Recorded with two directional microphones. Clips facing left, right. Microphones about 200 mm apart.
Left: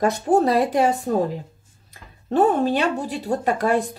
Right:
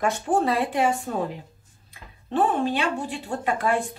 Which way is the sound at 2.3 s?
40° left (ahead or behind).